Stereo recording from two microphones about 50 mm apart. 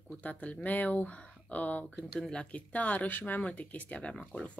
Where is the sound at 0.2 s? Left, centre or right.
Left.